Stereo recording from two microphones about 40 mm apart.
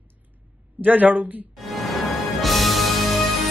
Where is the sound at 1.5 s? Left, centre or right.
Centre.